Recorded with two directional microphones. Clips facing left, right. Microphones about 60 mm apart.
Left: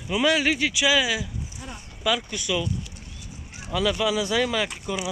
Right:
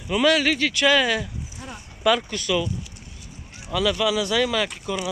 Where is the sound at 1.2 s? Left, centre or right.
Centre.